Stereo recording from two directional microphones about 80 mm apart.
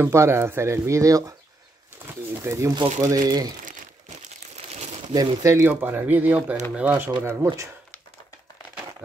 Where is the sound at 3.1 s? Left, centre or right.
Right.